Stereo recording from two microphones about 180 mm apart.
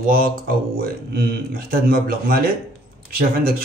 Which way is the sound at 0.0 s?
55° right (ahead or behind).